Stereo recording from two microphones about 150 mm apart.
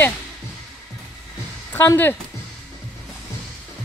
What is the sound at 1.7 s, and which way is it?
Speech, 15° left (ahead or behind).